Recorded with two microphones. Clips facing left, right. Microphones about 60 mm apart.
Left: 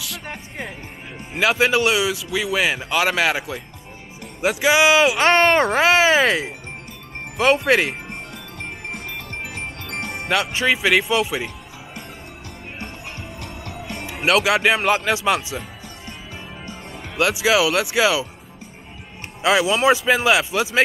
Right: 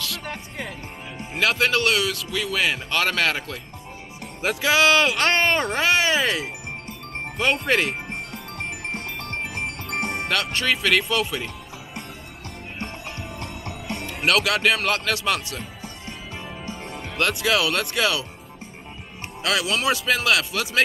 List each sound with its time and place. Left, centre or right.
0.2 s speech: centre
9.8 s music: right
10.2 s speech: centre
13.7 s music: left
14.0 s speech: centre
16.9 s speech: centre
19.4 s speech: centre